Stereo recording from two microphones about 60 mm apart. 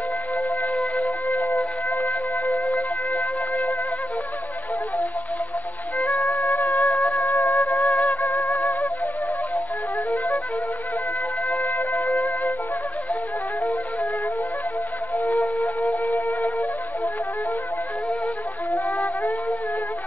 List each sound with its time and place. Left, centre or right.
0.9 s music: left
5.9 s music: left
6.2 s music: left
6.6 s music: left
6.9 s music: left
10.1 s music: left
11.4 s music: left
15.1 s music: left
18.7 s music: left